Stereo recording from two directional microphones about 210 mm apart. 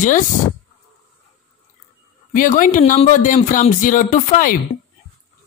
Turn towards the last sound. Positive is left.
turn(degrees=40)  # may be behind; listen again after turning